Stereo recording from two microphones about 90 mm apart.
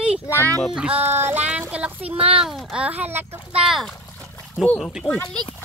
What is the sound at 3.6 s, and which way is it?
Speech, 5° right (ahead or behind).